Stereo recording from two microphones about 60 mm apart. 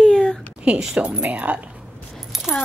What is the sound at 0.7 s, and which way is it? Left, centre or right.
Speech, centre.